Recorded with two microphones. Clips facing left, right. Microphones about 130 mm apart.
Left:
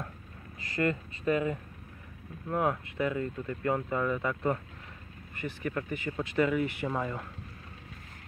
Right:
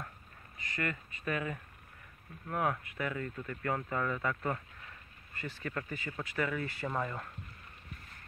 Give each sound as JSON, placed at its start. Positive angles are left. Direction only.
{"t": 0.6, "sound": "speech", "side_deg": 35}